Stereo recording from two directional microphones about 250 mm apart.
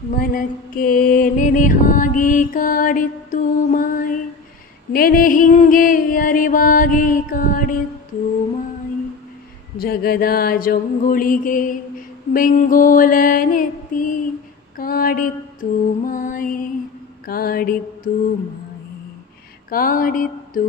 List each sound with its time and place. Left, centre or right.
0.2 s mantra: left
9.8 s mantra: left
19.7 s mantra: left